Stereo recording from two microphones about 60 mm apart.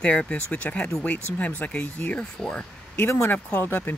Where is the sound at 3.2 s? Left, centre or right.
Left.